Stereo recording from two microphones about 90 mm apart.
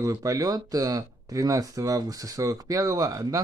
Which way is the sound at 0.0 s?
40° right (ahead or behind).